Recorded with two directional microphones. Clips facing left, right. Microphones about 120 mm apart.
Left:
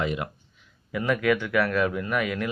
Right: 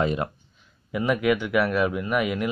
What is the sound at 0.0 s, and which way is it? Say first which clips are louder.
Speech: right 4 dB; 35° right (ahead or behind).